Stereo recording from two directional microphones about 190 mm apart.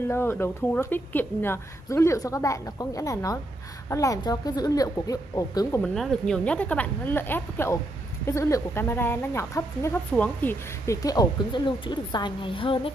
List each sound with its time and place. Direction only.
0.1 s speech: 10° left (ahead or behind)
5.8 s speech: 5° left (ahead or behind); by 12.9 s 25° left (ahead or behind)